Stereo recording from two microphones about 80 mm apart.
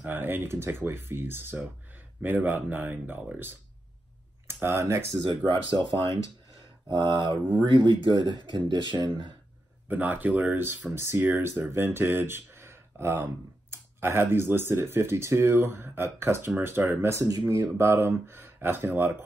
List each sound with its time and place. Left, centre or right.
0.0 s speech: right
4.5 s speech: right
5.5 s speech: right
9.8 s speech: right
17.1 s speech: right